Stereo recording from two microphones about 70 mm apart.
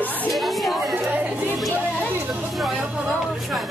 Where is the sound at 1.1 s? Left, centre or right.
Right.